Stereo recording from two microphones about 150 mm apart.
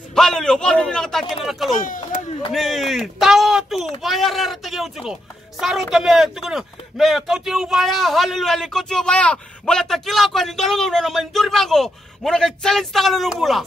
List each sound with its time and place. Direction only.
0.1 s speech: 5° left (ahead or behind)
1.8 s speech: 60° left (ahead or behind)
2.5 s speech: centre (ahead or behind)